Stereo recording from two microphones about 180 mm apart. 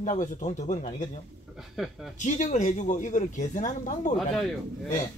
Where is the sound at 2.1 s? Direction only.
45° left (ahead or behind).